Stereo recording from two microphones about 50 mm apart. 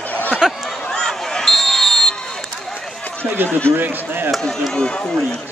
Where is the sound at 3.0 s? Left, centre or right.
Left.